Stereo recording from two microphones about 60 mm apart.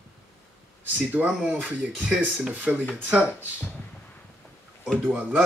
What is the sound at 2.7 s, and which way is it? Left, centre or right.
Speech, centre.